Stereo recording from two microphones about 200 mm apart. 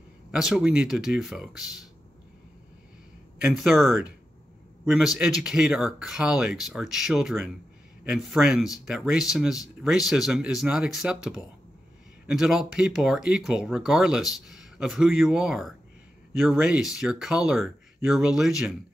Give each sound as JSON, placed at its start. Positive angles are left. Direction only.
{"t": 0.3, "sound": "speech", "side_deg": 0}
{"t": 3.3, "sound": "speech", "side_deg": 0}